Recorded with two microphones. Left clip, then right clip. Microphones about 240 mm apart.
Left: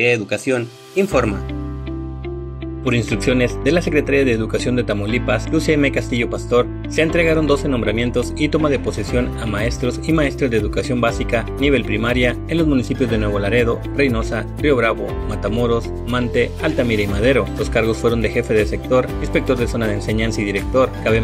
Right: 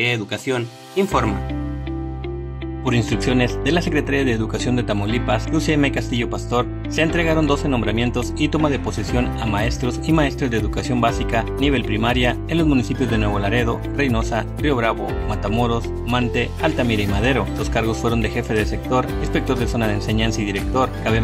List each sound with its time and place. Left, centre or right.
0.0 s speech: centre
2.9 s speech: centre